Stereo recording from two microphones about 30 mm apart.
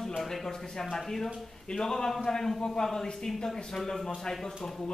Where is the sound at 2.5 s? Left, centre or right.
Left.